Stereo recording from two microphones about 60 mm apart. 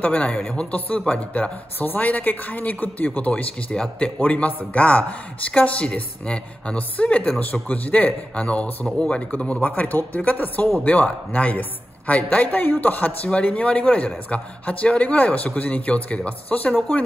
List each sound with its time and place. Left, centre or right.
0.0 s a man's voice: left
3.7 s speech: centre
4.2 s a man's voice: left